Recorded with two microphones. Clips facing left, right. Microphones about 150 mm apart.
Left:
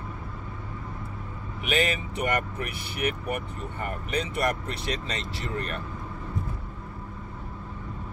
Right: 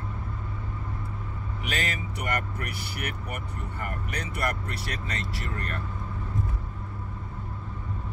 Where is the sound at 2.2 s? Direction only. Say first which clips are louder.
Left 4 dB; 20° left (ahead or behind).